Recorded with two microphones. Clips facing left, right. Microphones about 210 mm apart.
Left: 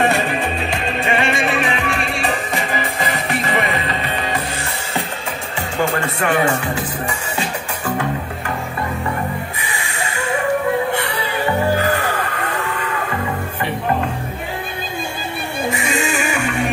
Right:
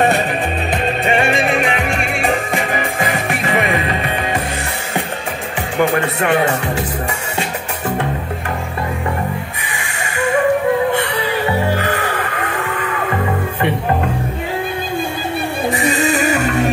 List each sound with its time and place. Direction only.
2.7 s music: 50° right (ahead or behind)
5.8 s speech: 20° right (ahead or behind)
15.7 s music: 35° right (ahead or behind)